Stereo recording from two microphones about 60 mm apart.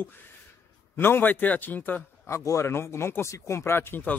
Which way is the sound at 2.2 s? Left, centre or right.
Left.